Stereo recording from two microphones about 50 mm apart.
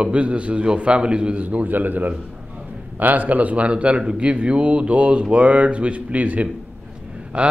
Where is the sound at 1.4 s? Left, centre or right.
Right.